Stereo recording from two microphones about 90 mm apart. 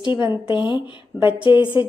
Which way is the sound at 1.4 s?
70° left (ahead or behind).